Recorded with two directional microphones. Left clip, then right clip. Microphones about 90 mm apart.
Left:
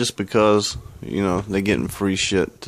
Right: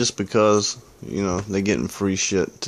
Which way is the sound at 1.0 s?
35° left (ahead or behind).